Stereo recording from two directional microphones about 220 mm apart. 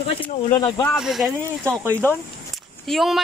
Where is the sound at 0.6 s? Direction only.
15° left (ahead or behind).